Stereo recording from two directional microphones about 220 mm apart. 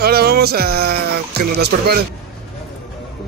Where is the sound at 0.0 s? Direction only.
45° right (ahead or behind).